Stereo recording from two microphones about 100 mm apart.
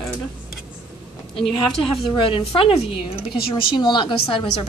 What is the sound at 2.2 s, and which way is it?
A woman's voice, 65° left (ahead or behind).